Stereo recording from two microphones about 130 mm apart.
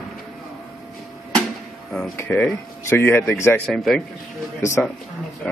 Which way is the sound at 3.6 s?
5° left (ahead or behind).